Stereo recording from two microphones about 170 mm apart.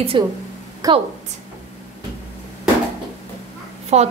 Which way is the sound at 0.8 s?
20° right (ahead or behind).